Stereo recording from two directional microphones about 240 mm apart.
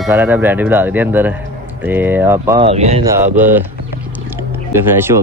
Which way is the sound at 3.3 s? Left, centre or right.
Centre.